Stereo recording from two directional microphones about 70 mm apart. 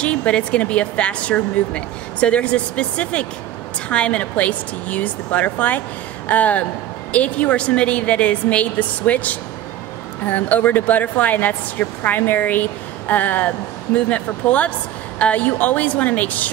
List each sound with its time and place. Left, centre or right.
0.0 s speech: centre